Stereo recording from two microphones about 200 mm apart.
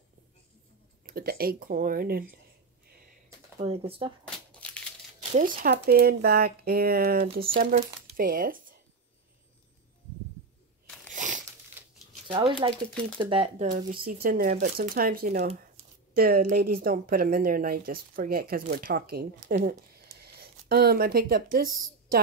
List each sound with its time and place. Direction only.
1.0 s a woman's voice: 45° right (ahead or behind)
3.5 s speech: 30° right (ahead or behind)
4.2 s crumpling: 5° left (ahead or behind)
5.3 s a woman's voice: 45° right (ahead or behind)
11.1 s crumpling: 40° right (ahead or behind)
12.3 s speech: 25° right (ahead or behind)
14.0 s a woman's voice: 45° right (ahead or behind)
19.5 s speech: 35° right (ahead or behind)
20.2 s speech: 50° right (ahead or behind)